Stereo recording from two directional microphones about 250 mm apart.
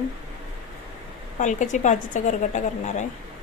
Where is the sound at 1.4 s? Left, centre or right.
Left.